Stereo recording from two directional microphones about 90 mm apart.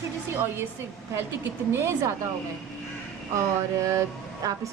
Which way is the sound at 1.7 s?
30° right (ahead or behind).